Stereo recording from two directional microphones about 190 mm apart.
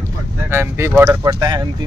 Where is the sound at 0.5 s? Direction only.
10° right (ahead or behind).